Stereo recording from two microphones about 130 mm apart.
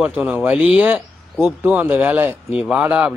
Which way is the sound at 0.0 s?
10° right (ahead or behind).